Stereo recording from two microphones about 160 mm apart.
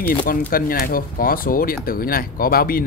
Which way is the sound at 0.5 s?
65° left (ahead or behind).